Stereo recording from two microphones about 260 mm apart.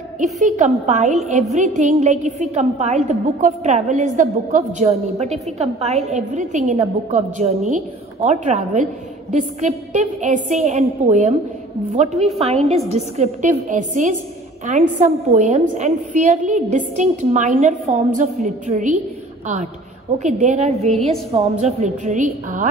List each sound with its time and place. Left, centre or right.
0.2 s a woman's voice: right